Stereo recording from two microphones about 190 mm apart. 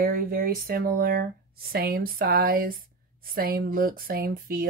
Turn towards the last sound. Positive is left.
turn(degrees=-50)  # may be behind; listen again after turning